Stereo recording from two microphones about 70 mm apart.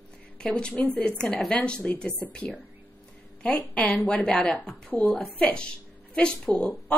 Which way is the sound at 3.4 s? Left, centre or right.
Centre.